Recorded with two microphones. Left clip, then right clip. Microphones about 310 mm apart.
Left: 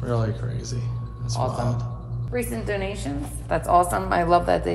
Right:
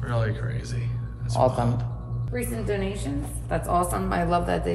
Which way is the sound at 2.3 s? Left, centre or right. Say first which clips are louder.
Left 2 dB; centre.